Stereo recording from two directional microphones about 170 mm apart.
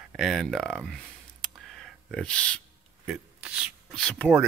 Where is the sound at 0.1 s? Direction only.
Centre (ahead or behind).